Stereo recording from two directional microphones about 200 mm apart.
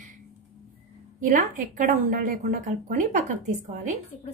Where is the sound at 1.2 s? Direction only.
45° right (ahead or behind).